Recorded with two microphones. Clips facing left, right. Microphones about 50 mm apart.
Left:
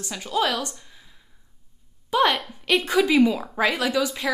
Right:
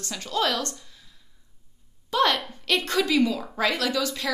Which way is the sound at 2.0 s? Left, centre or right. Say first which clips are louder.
Left 2 dB; centre.